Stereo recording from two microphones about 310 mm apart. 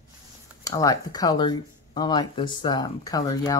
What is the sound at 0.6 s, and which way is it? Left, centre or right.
Speech, centre.